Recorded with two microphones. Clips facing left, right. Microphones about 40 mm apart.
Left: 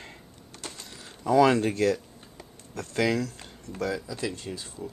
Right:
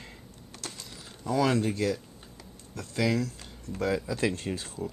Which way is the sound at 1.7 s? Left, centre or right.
Centre.